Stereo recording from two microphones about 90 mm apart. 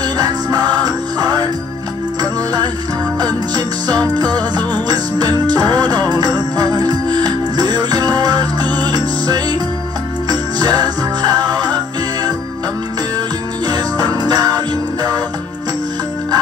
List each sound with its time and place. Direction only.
0.0 s music: 45° right (ahead or behind)
3.5 s music: 50° right (ahead or behind)
4.4 s music: 20° left (ahead or behind)
4.8 s music: 50° right (ahead or behind)
13.7 s music: 45° right (ahead or behind)